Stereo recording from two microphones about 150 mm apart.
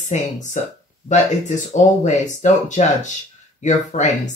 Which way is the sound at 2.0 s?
50° left (ahead or behind).